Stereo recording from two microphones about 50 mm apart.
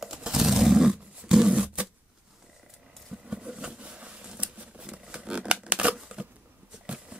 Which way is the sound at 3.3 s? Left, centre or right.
Centre.